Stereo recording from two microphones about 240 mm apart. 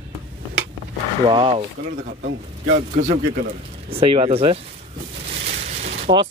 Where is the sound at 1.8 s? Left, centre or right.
Right.